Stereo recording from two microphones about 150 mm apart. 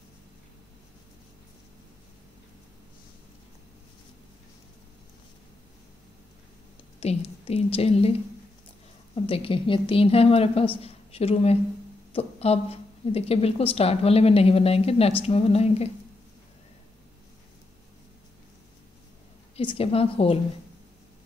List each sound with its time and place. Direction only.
7.0 s a woman's voice: 40° left (ahead or behind)
19.5 s a woman's voice: 40° left (ahead or behind)